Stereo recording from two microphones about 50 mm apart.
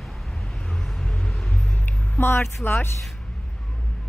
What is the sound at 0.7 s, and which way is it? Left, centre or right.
Vehicle, centre.